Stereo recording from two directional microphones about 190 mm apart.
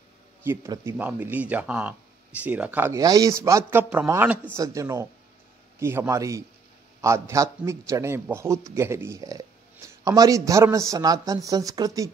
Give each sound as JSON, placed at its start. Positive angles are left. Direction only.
{"t": 0.4, "sound": "a man's voice", "side_deg": -15}